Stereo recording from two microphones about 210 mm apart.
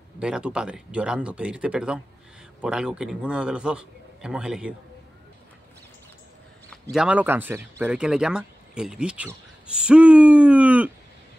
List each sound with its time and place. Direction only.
0.2 s speech: 5° right (ahead or behind)
6.7 s speech: centre (ahead or behind)